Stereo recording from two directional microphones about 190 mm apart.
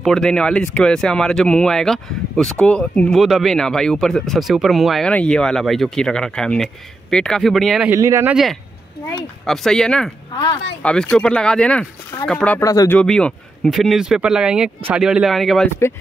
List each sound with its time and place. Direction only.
0.0 s speech: 5° left (ahead or behind)
7.9 s speech: 15° right (ahead or behind)
9.5 s speech: centre (ahead or behind)
10.3 s speech: 25° left (ahead or behind)
10.8 s speech: 5° left (ahead or behind)